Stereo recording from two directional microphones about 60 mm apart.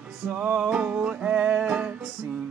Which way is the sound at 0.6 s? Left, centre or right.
Centre.